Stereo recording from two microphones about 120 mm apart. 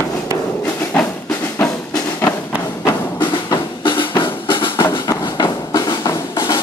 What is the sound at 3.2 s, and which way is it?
Drum, 40° left (ahead or behind).